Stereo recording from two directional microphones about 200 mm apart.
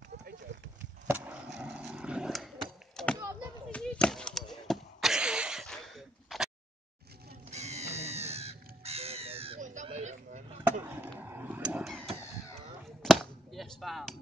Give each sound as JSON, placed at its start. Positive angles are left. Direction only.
{"t": 1.0, "sound": "skateboard", "side_deg": -10}
{"t": 3.2, "sound": "a sound", "side_deg": -15}
{"t": 3.7, "sound": "a sound", "side_deg": 5}
{"t": 7.5, "sound": "crow", "side_deg": -35}
{"t": 10.6, "sound": "chop", "side_deg": -10}
{"t": 13.0, "sound": "chop", "side_deg": 0}